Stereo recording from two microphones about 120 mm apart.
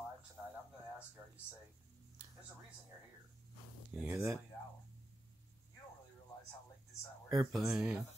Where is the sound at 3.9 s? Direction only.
10° right (ahead or behind).